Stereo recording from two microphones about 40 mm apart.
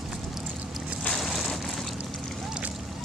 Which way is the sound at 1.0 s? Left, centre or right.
Centre.